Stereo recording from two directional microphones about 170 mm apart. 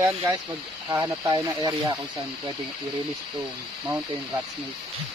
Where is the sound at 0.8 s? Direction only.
20° right (ahead or behind).